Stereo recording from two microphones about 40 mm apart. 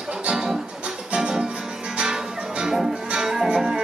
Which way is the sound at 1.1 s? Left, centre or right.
Right.